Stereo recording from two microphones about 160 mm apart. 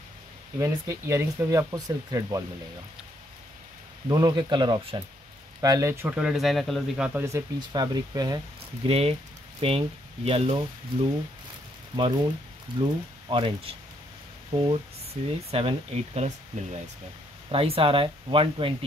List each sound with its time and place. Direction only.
0.6 s speech: 20° right (ahead or behind)
4.1 s speech: 25° right (ahead or behind)
6.0 s speech: 5° right (ahead or behind)
7.2 s speech: 20° right (ahead or behind)
8.8 s speech: 40° right (ahead or behind)
11.9 s speech: 30° right (ahead or behind)